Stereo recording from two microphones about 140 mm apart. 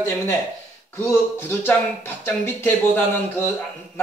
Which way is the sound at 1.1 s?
15° left (ahead or behind).